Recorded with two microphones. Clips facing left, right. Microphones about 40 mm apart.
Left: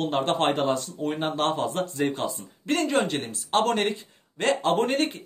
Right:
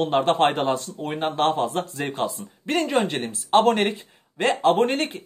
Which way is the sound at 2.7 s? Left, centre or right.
Centre.